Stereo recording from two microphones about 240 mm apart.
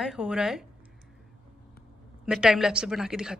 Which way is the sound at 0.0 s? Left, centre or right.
Centre.